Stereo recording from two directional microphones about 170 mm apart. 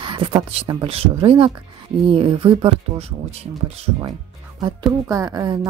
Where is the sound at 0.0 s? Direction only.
30° right (ahead or behind).